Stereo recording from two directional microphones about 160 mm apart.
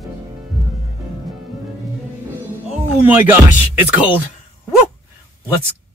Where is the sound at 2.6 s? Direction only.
10° right (ahead or behind).